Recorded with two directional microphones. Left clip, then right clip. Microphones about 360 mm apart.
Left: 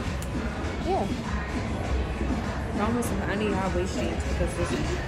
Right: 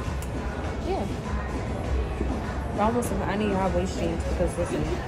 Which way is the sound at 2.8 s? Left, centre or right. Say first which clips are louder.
Right 4 dB; right.